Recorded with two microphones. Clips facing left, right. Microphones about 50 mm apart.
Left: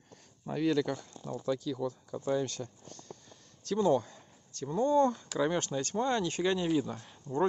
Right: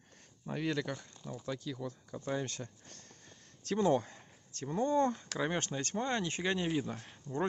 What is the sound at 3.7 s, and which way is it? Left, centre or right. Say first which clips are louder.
Speech: left 2 dB; right.